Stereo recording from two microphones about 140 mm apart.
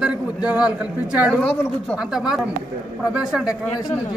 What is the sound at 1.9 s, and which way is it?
A man's voice, 5° right (ahead or behind).